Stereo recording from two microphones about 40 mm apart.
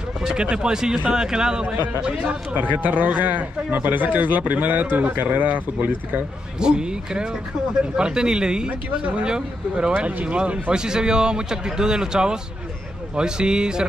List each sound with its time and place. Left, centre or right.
0.3 s speech: right
2.5 s speech: right
6.6 s speech: right
8.6 s speech: right
9.2 s speech: right
9.9 s speech: right
10.7 s speech: centre